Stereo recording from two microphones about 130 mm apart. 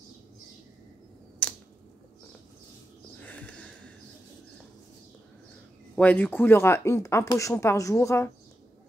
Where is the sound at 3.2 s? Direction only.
10° left (ahead or behind).